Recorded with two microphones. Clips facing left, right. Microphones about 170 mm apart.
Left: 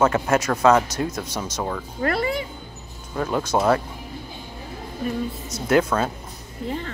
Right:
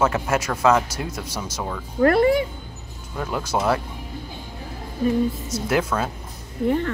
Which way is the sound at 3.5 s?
Centre (ahead or behind).